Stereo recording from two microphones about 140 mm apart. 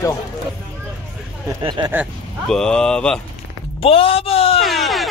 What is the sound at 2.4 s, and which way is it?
Speech, 5° left (ahead or behind).